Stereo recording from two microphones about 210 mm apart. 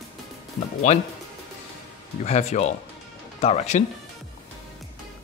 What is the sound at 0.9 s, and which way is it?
Speech, 35° left (ahead or behind).